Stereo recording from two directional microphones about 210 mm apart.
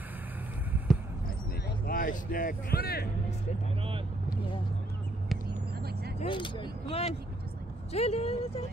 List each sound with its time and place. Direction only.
1.9 s speech: 40° left (ahead or behind)
6.1 s speech: 25° left (ahead or behind)